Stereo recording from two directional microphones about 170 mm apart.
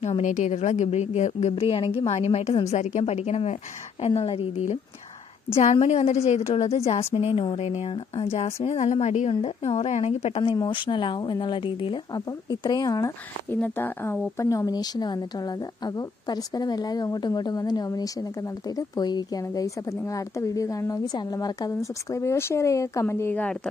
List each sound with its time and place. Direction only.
0.0 s a woman's voice: 45° left (ahead or behind); by 23.7 s 5° left (ahead or behind)